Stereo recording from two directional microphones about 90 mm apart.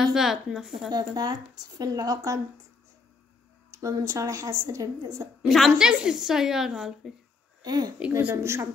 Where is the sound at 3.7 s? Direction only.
35° right (ahead or behind).